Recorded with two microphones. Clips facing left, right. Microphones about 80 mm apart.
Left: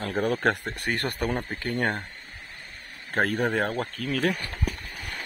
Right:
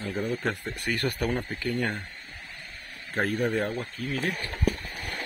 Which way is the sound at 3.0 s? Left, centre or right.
Left.